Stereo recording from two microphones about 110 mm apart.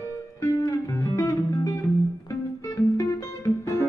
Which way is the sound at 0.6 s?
35° left (ahead or behind).